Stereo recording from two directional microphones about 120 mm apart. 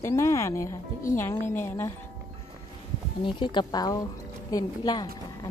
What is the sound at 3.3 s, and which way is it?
Speech, 40° left (ahead or behind).